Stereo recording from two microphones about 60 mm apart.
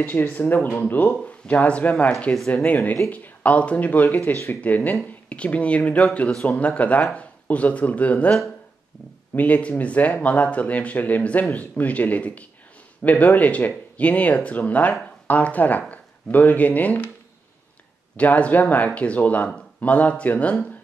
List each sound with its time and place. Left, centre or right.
0.2 s speech: left
18.1 s speech: left